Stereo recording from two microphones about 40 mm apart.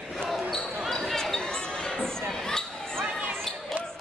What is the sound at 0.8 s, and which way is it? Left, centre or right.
Basketball bounce, centre.